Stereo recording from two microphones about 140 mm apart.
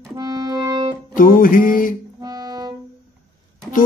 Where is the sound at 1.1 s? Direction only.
75° left (ahead or behind).